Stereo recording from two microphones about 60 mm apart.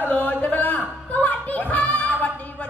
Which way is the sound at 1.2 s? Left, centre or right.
Left.